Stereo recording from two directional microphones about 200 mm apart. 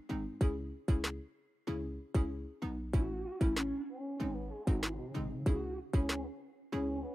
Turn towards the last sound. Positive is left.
turn(degrees=0)  # may be behind; listen again after turning